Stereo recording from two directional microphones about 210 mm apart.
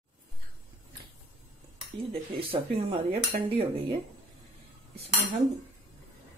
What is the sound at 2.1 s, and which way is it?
Speech, 25° right (ahead or behind).